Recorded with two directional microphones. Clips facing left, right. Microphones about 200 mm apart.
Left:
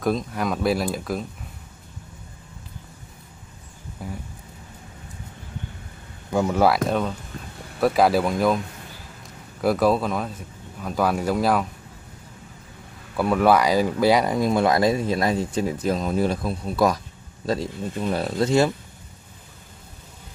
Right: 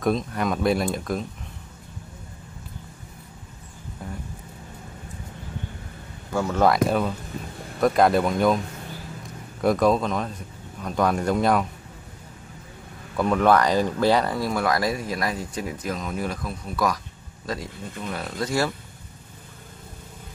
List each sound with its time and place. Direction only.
0.0 s speech: centre (ahead or behind)
4.0 s speech: 5° left (ahead or behind)
6.3 s speech: 15° left (ahead or behind)
6.9 s speech: 5° right (ahead or behind)
9.6 s speech: 5° left (ahead or behind)
13.1 s speech: 5° left (ahead or behind); by 18.7 s 25° left (ahead or behind)